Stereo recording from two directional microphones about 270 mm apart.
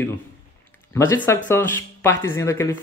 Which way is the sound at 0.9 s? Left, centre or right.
Centre.